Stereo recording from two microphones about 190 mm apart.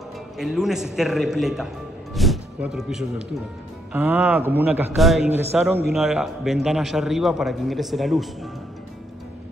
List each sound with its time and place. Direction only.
0.4 s a man's voice: centre (ahead or behind)